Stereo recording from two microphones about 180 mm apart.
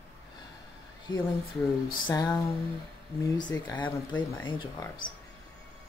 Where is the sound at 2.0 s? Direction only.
20° left (ahead or behind).